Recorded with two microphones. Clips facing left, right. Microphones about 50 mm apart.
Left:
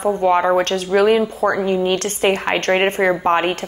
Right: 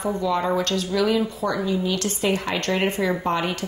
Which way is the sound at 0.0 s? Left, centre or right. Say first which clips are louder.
Left 7 dB; left.